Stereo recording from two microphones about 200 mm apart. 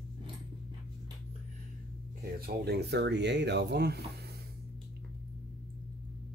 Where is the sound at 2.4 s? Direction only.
55° right (ahead or behind).